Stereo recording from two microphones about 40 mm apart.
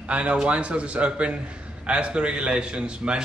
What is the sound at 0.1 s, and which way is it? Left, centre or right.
Speech, right.